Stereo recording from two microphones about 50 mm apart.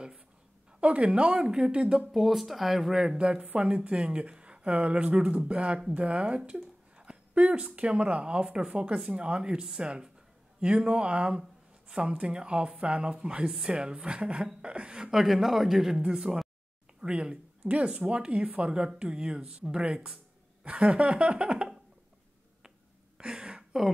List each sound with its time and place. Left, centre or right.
0.7 s speech: right
2.1 s speech: centre
3.2 s speech: right
13.5 s speech: centre
15.0 s speech: centre
17.0 s speech: right
23.1 s a sound: centre